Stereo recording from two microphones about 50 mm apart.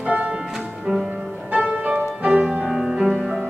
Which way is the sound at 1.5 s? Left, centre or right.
Right.